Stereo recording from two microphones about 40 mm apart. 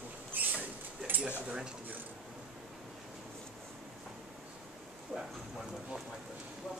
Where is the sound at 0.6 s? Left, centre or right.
Right.